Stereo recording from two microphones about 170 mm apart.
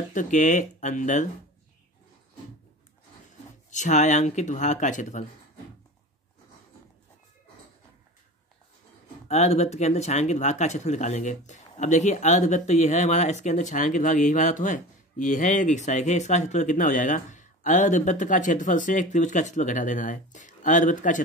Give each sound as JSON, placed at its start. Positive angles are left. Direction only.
{"t": 0.1, "sound": "speech", "side_deg": 50}
{"t": 3.7, "sound": "speech", "side_deg": 45}
{"t": 9.3, "sound": "speech", "side_deg": 40}